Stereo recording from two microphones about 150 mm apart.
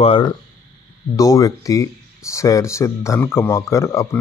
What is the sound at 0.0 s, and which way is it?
Speech, 35° left (ahead or behind).